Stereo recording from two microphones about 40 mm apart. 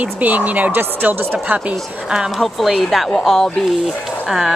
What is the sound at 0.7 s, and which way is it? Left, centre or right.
Speech, right.